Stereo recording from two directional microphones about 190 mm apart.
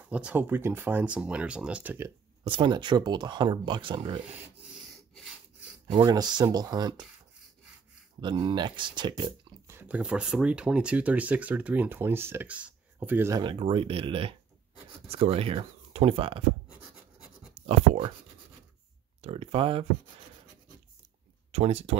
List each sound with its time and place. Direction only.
0.1 s speech: 5° right (ahead or behind)
2.4 s speech: 25° right (ahead or behind)
4.7 s rub: centre (ahead or behind)
5.9 s speech: 20° right (ahead or behind)
8.2 s speech: 25° right (ahead or behind)
13.4 s speech: 25° right (ahead or behind)
17.6 s speech: 35° right (ahead or behind)
19.2 s speech: 30° right (ahead or behind)
21.5 s speech: 35° right (ahead or behind)